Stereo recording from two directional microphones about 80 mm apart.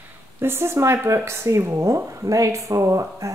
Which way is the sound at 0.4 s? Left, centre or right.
Right.